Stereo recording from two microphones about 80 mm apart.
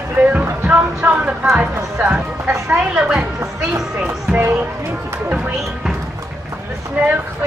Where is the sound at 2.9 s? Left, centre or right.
Centre.